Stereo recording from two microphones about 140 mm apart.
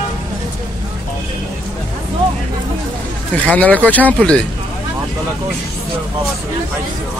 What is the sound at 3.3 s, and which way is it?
Speech, 10° left (ahead or behind).